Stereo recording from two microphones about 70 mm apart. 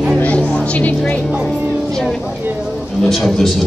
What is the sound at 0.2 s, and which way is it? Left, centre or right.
Music, centre.